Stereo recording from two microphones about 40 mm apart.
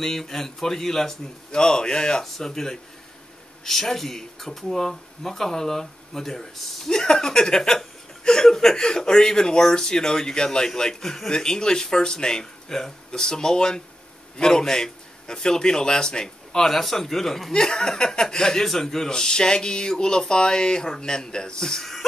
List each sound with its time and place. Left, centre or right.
0.0 s a man's voice: centre
2.2 s a man's voice: centre